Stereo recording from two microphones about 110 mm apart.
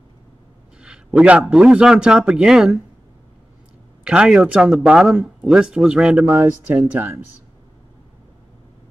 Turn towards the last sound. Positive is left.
turn(degrees=-15)  # may be behind; listen again after turning